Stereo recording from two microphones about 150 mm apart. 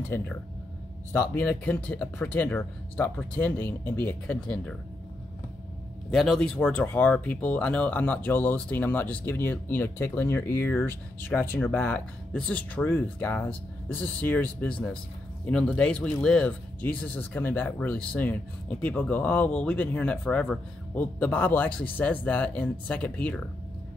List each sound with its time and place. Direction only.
1.1 s speech: 15° left (ahead or behind)
6.0 s speech: centre (ahead or behind)